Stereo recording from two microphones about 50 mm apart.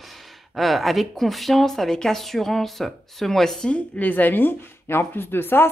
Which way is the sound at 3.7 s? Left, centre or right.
Left.